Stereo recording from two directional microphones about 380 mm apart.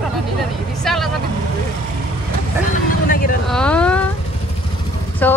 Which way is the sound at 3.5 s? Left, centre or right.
Centre.